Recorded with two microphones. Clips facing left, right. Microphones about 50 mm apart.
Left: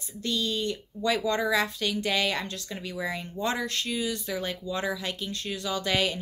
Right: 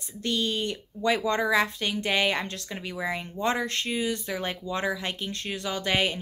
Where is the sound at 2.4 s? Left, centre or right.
Right.